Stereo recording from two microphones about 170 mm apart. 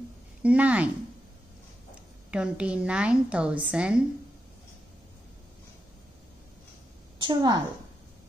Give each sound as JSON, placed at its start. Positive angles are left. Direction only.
{"t": 0.4, "sound": "a woman's voice", "side_deg": -10}
{"t": 2.3, "sound": "a woman's voice", "side_deg": -5}
{"t": 7.2, "sound": "a woman's voice", "side_deg": -25}